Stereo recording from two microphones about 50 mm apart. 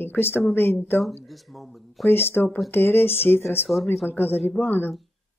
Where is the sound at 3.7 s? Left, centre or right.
Centre.